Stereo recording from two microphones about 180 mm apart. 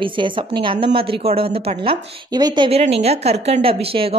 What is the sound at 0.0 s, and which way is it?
A woman's voice, 25° right (ahead or behind).